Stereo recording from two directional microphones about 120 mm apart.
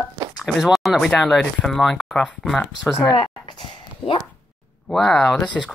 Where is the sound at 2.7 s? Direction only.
30° left (ahead or behind); by 4.2 s 45° left (ahead or behind).